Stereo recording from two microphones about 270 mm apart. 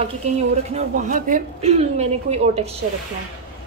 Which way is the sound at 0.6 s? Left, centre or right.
Right.